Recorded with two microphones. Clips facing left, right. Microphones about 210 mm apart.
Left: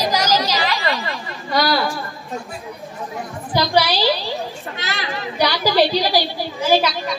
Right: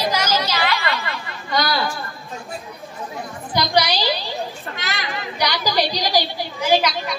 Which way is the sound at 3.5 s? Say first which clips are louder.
Left 2 dB; 15° right (ahead or behind).